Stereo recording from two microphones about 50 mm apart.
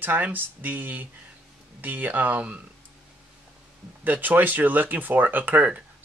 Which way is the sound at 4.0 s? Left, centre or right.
Right.